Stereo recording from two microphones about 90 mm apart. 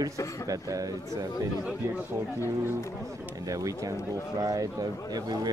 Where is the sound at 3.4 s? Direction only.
40° right (ahead or behind).